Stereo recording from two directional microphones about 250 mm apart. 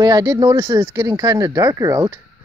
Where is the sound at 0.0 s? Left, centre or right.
Centre.